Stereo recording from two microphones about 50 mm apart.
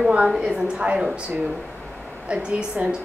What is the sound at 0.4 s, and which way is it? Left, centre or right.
Speech, right.